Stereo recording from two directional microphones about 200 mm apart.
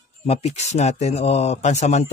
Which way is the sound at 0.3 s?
30° left (ahead or behind).